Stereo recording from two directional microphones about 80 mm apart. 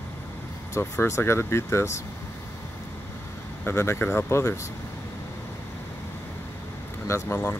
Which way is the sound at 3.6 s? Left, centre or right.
Left.